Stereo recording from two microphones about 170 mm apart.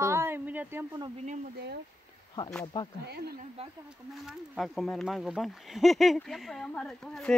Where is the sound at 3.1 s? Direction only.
70° right (ahead or behind).